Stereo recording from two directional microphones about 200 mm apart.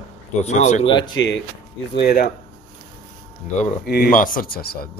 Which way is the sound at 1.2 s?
70° left (ahead or behind).